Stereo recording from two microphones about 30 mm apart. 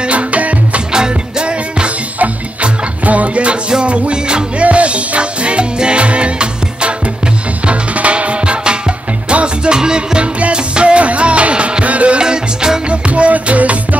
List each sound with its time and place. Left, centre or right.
0.0 s music: right
0.9 s music: right
3.1 s music: right
3.8 s music: right
12.2 s music: right
12.9 s music: right